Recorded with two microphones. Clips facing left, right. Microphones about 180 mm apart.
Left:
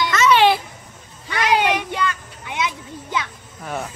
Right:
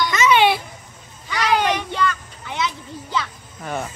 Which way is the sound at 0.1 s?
10° right (ahead or behind).